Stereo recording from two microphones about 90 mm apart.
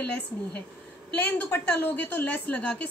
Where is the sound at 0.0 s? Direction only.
15° left (ahead or behind).